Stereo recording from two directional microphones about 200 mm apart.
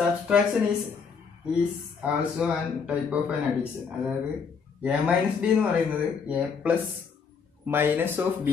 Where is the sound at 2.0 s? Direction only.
5° right (ahead or behind).